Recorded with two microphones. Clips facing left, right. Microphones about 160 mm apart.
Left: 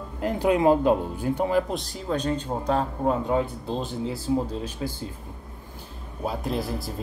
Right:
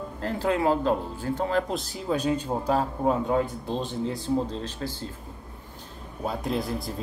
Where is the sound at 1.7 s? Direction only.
Centre (ahead or behind).